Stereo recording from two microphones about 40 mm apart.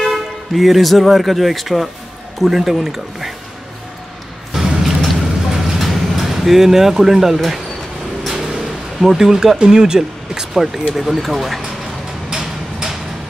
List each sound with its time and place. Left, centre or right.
0.0 s speech: centre
4.5 s music: centre
5.7 s a sound: centre
7.3 s speech: centre
8.3 s vehicle: centre
9.6 s speech: centre
12.3 s a sound: centre